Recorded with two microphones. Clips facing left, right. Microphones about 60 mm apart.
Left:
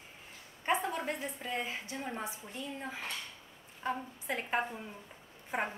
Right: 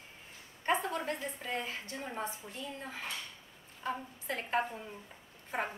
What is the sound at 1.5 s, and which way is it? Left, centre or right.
Speech, left.